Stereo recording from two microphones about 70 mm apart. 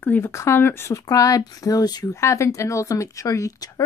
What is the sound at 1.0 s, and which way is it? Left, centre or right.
Speech, left.